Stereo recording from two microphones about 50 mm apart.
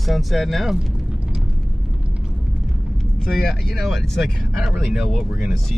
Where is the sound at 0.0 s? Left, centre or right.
Centre.